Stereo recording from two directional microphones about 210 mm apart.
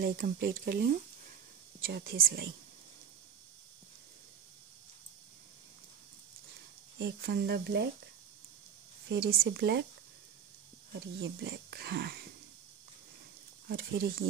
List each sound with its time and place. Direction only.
0.0 s speech: 45° right (ahead or behind)
7.0 s speech: 50° right (ahead or behind)
9.1 s speech: 50° right (ahead or behind)
10.9 s speech: 50° right (ahead or behind)
13.7 s speech: 45° right (ahead or behind)